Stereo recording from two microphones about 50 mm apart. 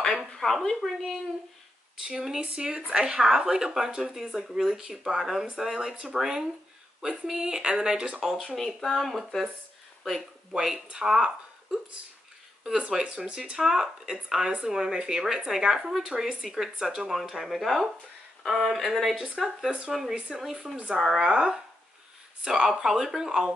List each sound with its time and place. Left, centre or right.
0.3 s speech: centre
2.0 s speech: centre
8.3 s speech: centre
11.1 s speech: centre
12.9 s speech: centre
20.2 s speech: centre